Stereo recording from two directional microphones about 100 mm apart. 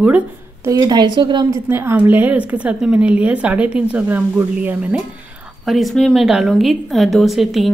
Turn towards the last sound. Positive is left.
turn(degrees=0)  # may be behind; listen again after turning